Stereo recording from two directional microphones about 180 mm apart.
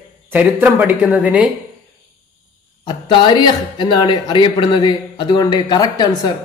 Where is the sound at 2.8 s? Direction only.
25° left (ahead or behind).